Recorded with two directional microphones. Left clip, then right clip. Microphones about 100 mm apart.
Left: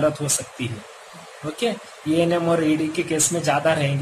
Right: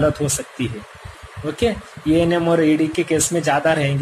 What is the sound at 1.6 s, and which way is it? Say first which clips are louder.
Speech: right 4 dB; 30° right (ahead or behind).